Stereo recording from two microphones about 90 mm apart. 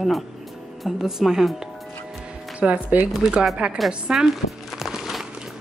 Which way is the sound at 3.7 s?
5° right (ahead or behind).